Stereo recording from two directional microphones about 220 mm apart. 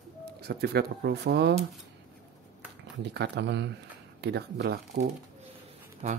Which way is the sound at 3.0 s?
50° right (ahead or behind).